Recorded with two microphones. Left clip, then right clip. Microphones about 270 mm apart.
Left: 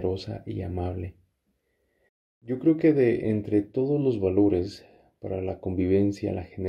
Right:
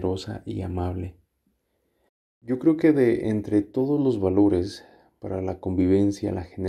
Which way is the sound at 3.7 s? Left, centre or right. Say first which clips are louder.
Right 2 dB; centre.